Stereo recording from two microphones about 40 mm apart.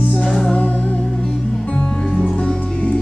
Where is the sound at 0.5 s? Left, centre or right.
Left.